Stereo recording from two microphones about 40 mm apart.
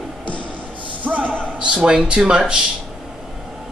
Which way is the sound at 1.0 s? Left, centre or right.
Right.